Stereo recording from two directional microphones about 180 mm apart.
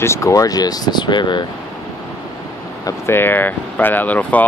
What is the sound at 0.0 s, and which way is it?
Speech, 15° left (ahead or behind).